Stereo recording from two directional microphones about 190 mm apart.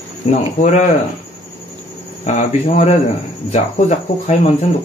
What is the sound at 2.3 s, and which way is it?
Speech, 35° left (ahead or behind).